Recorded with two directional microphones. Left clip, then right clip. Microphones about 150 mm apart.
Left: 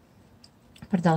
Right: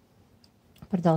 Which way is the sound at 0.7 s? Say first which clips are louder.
Even; 40° right (ahead or behind).